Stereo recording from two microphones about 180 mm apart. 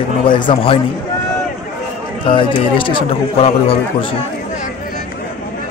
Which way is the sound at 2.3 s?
30° left (ahead or behind).